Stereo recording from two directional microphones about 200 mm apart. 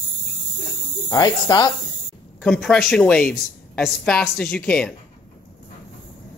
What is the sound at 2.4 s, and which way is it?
A woman's voice, centre (ahead or behind).